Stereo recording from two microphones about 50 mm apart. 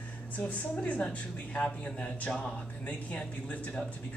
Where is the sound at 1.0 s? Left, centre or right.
Left.